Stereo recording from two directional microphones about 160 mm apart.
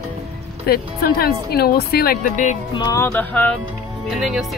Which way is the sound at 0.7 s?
75° left (ahead or behind).